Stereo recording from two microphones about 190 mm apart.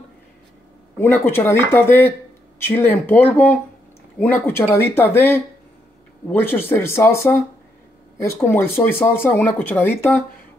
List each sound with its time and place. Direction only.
0.9 s speech: 10° left (ahead or behind)